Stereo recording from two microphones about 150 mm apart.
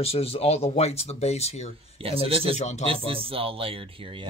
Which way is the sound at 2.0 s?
40° right (ahead or behind).